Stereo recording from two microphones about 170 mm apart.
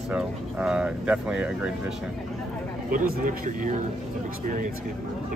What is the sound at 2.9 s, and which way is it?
Speech, 55° right (ahead or behind).